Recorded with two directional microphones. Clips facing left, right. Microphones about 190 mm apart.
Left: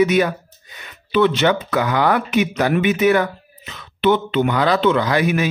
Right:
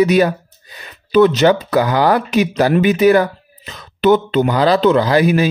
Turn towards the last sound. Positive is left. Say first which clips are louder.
# right 5 dB
turn(degrees=-35)  # may be behind; listen again after turning